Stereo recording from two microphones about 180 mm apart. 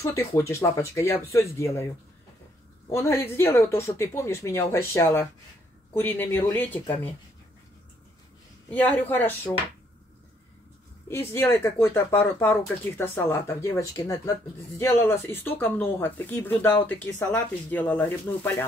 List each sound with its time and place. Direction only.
0.0 s speech: 15° left (ahead or behind)
2.9 s speech: 15° left (ahead or behind)
8.6 s speech: 10° left (ahead or behind)
11.1 s speech: 15° left (ahead or behind)